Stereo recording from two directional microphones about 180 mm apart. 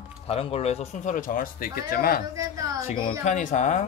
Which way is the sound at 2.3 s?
15° right (ahead or behind).